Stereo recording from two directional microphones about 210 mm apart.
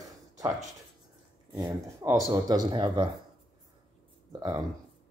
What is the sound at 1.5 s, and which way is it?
Speech, 20° right (ahead or behind).